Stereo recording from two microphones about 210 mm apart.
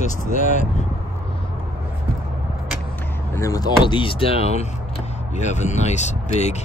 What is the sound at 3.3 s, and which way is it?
Speech, 15° left (ahead or behind).